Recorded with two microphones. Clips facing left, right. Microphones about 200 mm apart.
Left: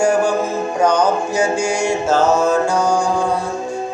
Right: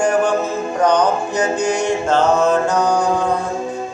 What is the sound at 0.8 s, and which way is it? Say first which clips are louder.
Mantra: even; 10° left (ahead or behind).